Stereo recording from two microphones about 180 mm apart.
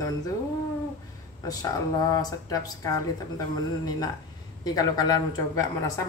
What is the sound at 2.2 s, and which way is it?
A woman's voice, 20° left (ahead or behind).